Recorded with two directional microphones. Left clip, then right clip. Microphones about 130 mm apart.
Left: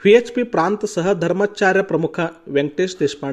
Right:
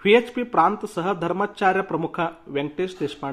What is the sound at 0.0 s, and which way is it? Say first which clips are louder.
Speech: left 5 dB; 45° left (ahead or behind).